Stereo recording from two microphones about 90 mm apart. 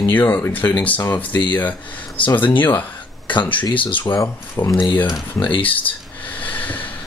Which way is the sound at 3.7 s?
70° left (ahead or behind).